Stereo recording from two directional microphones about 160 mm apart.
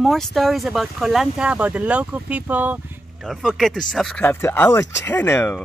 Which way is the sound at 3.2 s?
Centre (ahead or behind).